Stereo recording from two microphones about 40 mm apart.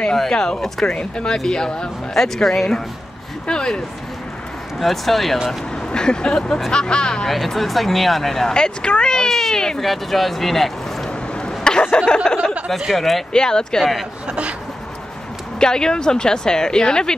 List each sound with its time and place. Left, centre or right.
0.3 s speech: centre
3.4 s vehicle: centre
4.7 s speech: centre
5.9 s vehicle: left
7.2 s speech: centre
8.5 s vehicle: left
9.3 s speech: centre
9.8 s speech: centre
11.1 s a sound: left
11.9 s vehicle: left
12.9 s speech: centre
13.3 s speech: centre
14.2 s a sound: right
15.6 s speech: centre